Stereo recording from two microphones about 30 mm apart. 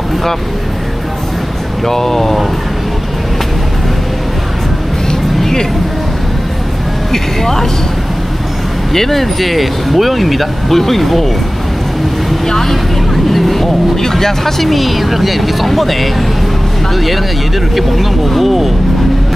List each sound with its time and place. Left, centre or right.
1.9 s speech: centre
5.4 s vehicle: centre
7.1 s speech: centre
8.9 s speech: centre
12.4 s vehicle: centre
14.0 s speech: centre